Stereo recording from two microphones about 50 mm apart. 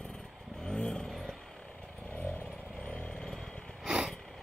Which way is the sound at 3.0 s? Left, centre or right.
Centre.